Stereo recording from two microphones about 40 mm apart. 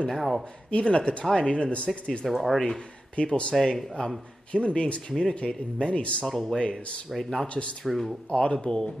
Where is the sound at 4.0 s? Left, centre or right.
Centre.